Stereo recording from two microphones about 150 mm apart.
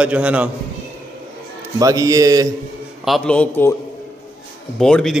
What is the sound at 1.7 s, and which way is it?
Speech, 25° right (ahead or behind).